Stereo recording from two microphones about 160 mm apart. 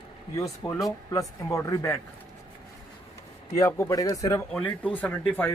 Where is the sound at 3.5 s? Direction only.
15° left (ahead or behind).